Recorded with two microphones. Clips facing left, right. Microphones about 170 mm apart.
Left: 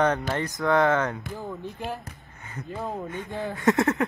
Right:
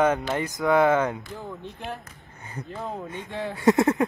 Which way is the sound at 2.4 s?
30° right (ahead or behind).